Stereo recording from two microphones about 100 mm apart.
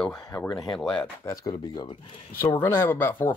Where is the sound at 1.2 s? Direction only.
40° left (ahead or behind).